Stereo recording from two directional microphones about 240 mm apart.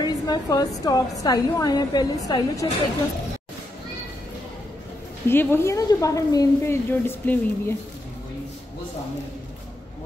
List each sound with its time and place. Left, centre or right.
0.0 s a sound: centre
0.8 s a woman's voice: centre
5.3 s a woman's voice: centre